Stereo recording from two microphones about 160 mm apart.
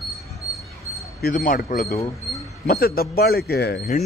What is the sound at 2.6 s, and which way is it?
A man's voice, 70° left (ahead or behind).